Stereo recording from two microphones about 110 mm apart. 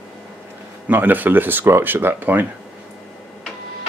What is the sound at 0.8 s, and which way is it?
Speech, 15° right (ahead or behind).